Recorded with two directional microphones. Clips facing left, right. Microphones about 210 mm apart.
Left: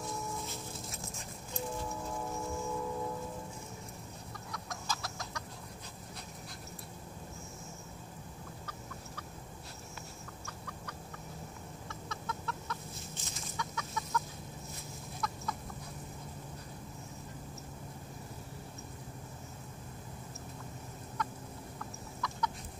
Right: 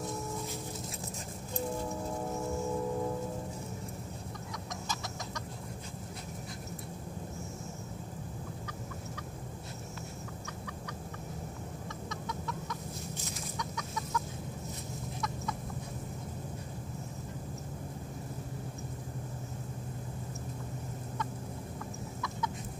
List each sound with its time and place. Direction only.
12.1 s chicken: 15° right (ahead or behind)
13.6 s chicken: centre (ahead or behind)